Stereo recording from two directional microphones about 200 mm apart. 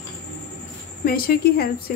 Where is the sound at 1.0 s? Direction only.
50° left (ahead or behind).